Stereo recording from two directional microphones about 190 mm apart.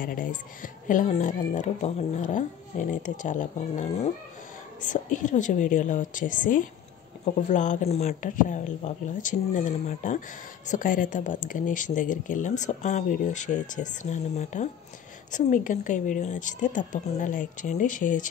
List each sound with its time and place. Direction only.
0.0 s speech: 45° left (ahead or behind)